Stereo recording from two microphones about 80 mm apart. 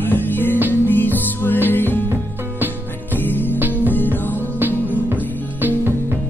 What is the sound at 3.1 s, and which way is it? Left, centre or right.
Music, left.